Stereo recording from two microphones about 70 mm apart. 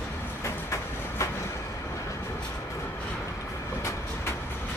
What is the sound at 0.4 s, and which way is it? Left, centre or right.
Train, left.